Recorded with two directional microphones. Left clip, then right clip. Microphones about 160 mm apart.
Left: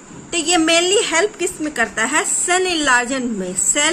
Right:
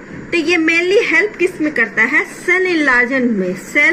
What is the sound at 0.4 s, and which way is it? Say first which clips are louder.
A woman's voice: right 1 dB; 35° left (ahead or behind).